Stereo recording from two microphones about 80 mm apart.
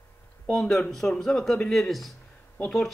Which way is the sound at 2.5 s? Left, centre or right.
Centre.